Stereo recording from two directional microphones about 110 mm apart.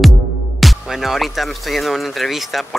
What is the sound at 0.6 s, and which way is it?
Speech, centre (ahead or behind).